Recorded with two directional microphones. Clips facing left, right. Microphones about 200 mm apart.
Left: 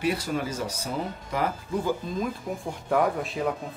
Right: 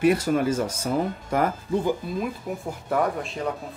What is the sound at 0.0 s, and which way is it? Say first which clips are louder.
Speech: right 7 dB; 50° right (ahead or behind).